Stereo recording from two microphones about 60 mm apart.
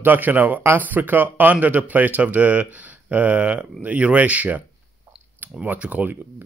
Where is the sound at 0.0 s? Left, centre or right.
Right.